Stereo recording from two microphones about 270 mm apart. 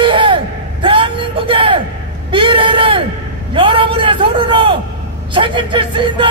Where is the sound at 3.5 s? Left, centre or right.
Centre.